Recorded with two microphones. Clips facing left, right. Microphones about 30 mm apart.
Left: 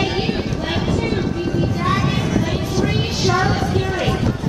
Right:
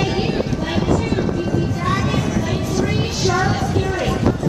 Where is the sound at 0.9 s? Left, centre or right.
Centre.